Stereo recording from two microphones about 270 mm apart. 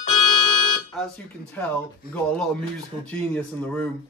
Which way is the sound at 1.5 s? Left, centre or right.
Centre.